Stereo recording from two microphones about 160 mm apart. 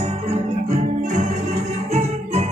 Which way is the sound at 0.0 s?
40° right (ahead or behind).